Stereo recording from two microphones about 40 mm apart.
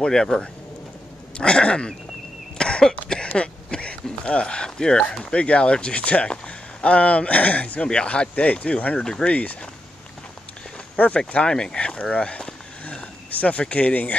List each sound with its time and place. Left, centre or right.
0.0 s speech: centre
1.4 s speech: left
7.9 s speech: left
9.0 s speech: centre
9.3 s speech: left
11.0 s speech: left
11.4 s speech: left
12.8 s a sound: left